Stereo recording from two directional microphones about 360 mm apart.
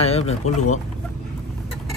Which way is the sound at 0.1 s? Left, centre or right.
Centre.